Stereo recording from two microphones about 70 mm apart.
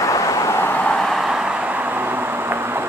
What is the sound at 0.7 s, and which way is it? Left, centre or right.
Vehicle, centre.